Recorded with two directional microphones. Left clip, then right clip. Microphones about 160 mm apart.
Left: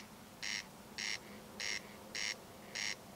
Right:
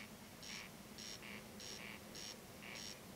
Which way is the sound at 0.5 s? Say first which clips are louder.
Left 9 dB; 15° left (ahead or behind).